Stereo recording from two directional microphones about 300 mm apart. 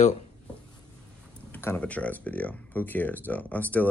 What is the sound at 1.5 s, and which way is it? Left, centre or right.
Speech, centre.